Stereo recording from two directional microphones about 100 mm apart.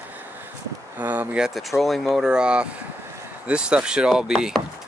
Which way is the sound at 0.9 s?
15° right (ahead or behind).